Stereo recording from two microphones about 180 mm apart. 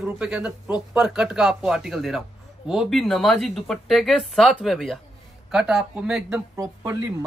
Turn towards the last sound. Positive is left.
turn(degrees=-15)  # may be behind; listen again after turning